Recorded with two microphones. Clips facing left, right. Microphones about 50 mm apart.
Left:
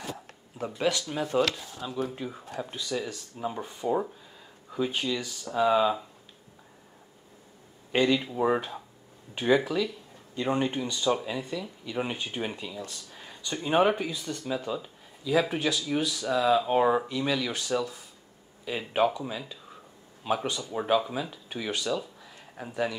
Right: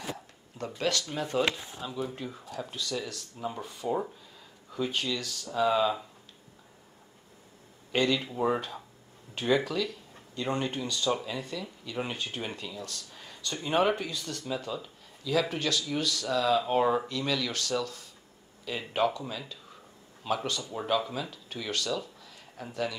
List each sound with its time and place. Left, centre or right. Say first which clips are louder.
0.6 s speech: left 2 dB; centre
1.4 s speech: left 2 dB; right
2.1 s speech: left 2 dB; centre
7.9 s speech: left 3 dB; centre